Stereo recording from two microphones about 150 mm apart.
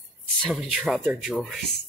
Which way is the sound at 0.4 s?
Centre (ahead or behind).